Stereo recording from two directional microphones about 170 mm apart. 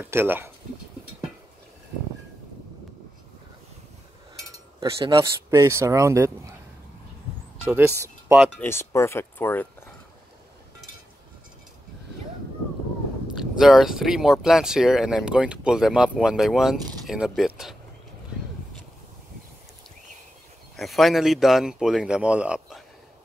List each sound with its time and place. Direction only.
0.0 s speech: 10° right (ahead or behind)
4.9 s speech: 30° right (ahead or behind)
5.5 s speech: 15° right (ahead or behind)
7.7 s speech: 15° right (ahead or behind)
8.5 s speech: 15° left (ahead or behind)
13.4 s speech: centre (ahead or behind)
20.7 s speech: centre (ahead or behind)